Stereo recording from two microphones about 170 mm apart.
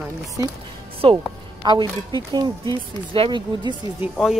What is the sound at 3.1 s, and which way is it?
Speech, 30° right (ahead or behind).